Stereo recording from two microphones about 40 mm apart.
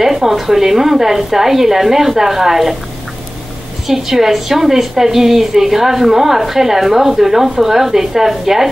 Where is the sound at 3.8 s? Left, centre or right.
Centre.